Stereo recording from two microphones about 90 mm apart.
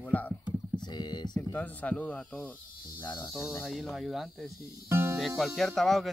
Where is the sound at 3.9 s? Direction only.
Centre (ahead or behind).